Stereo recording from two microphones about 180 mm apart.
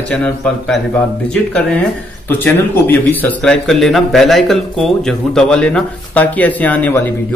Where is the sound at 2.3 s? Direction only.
10° left (ahead or behind).